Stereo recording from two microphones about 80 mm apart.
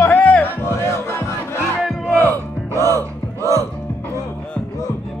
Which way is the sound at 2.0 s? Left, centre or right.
Left.